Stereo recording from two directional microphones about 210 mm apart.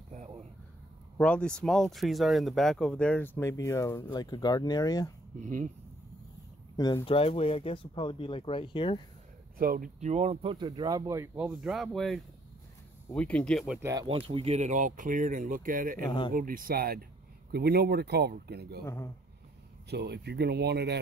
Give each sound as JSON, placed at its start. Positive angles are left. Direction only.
{"t": 0.1, "sound": "a sound", "side_deg": -35}
{"t": 1.1, "sound": "speech", "side_deg": 5}
{"t": 5.4, "sound": "speech", "side_deg": -40}
{"t": 6.8, "sound": "speech", "side_deg": 20}
{"t": 9.6, "sound": "speech", "side_deg": -40}
{"t": 11.4, "sound": "speech", "side_deg": 0}
{"t": 13.7, "sound": "speech", "side_deg": -15}
{"t": 14.0, "sound": "speech", "side_deg": -25}
{"t": 16.1, "sound": "speech", "side_deg": 20}
{"t": 16.3, "sound": "speech", "side_deg": -40}
{"t": 18.9, "sound": "speech", "side_deg": 10}
{"t": 19.9, "sound": "speech", "side_deg": -50}